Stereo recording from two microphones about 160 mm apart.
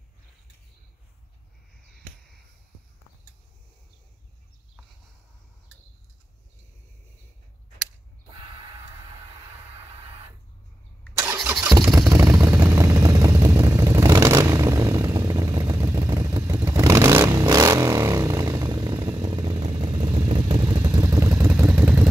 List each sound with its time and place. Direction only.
11.1 s vehicle: 10° right (ahead or behind)
11.6 s vehicle: 20° right (ahead or behind)